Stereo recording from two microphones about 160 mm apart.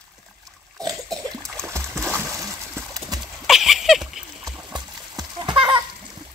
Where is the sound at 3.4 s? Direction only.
Centre (ahead or behind).